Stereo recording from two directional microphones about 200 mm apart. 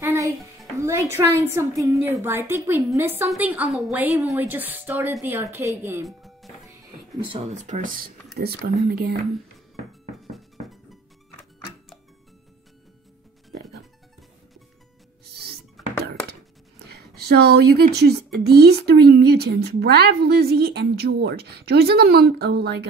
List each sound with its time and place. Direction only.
0.0 s music: 15° right (ahead or behind)
0.7 s a woman's voice: 15° right (ahead or behind)
6.0 s music: centre (ahead or behind)
7.3 s speech: 35° right (ahead or behind)
8.4 s a woman's voice: 50° right (ahead or behind)
10.3 s music: centre (ahead or behind)
15.3 s music: 55° right (ahead or behind)
16.8 s a woman's voice: 55° right (ahead or behind)